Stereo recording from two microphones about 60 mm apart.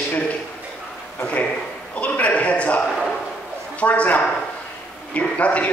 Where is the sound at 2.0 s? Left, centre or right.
Left.